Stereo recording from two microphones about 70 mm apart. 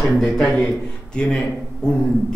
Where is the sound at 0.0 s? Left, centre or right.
Centre.